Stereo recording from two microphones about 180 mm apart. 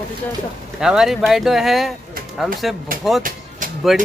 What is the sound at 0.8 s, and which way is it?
Speech, 5° right (ahead or behind).